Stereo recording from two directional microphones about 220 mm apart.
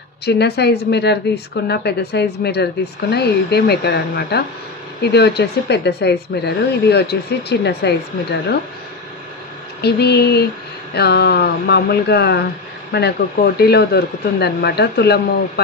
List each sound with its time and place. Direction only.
0.2 s a woman's voice: 50° left (ahead or behind)
9.8 s a woman's voice: 50° left (ahead or behind)